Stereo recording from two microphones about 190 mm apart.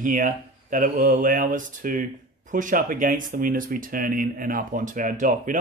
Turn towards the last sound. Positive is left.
turn(degrees=-45)  # may be behind; listen again after turning